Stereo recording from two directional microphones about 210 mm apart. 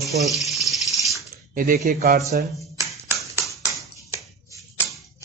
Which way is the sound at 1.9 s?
45° right (ahead or behind).